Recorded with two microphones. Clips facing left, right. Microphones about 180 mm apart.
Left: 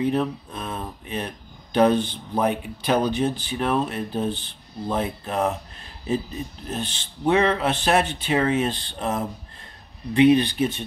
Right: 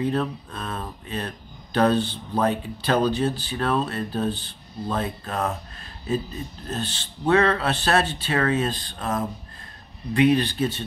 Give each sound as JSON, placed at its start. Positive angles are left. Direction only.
{"t": 0.0, "sound": "speech", "side_deg": 15}
{"t": 6.7, "sound": "speech", "side_deg": 15}